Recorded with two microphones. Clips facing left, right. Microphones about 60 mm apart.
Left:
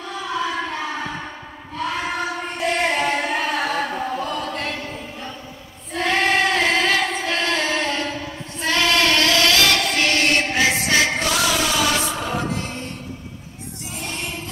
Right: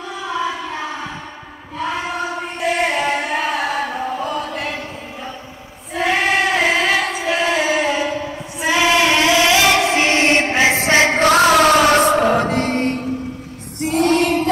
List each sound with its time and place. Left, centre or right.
2.6 s singing: centre
5.9 s choir: centre; by 13.0 s right
13.7 s music: right